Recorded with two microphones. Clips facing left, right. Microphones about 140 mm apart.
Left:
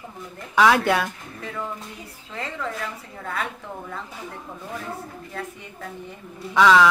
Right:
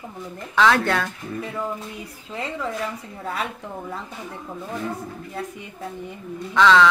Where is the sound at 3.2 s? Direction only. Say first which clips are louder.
Right 1 dB; 20° right (ahead or behind).